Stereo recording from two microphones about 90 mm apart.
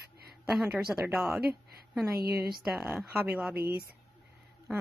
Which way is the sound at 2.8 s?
20° right (ahead or behind).